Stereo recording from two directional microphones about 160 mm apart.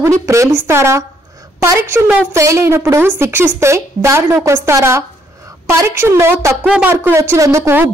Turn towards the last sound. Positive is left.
turn(degrees=-15)  # may be behind; listen again after turning